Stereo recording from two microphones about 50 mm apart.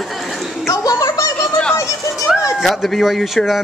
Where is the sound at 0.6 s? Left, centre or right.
Left.